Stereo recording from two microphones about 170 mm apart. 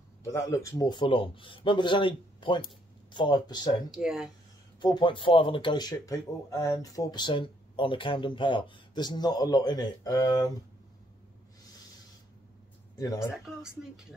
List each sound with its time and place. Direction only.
0.3 s speech: 20° left (ahead or behind)
3.9 s speech: 5° right (ahead or behind)
4.7 s speech: 25° left (ahead or behind)
12.9 s speech: 20° left (ahead or behind)
13.2 s speech: 5° right (ahead or behind)